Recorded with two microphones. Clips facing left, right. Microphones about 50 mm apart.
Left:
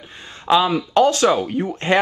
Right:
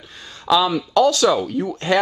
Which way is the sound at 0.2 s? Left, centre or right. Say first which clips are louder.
Left 1 dB; left.